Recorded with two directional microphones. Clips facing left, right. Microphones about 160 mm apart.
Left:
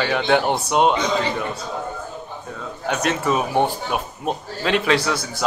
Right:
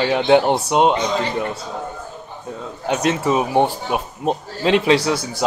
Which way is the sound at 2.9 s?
25° right (ahead or behind).